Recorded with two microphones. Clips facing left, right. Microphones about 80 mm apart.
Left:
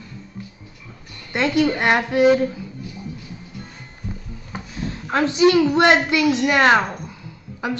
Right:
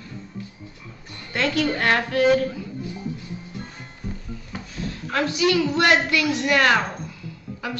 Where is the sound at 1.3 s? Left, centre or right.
Centre.